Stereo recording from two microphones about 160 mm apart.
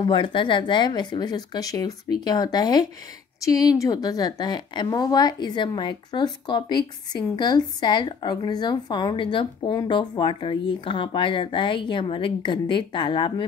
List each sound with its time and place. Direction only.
0.0 s a woman's voice: 30° left (ahead or behind)